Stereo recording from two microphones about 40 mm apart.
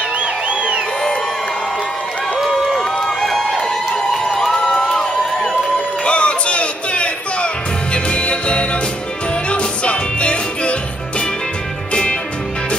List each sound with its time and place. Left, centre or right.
0.6 s music: right
2.8 s run: centre
4.6 s crowd: left
6.0 s music: left